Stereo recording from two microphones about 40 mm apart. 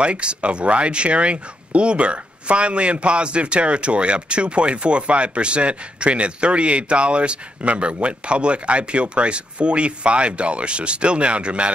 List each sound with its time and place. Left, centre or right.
0.0 s speech: right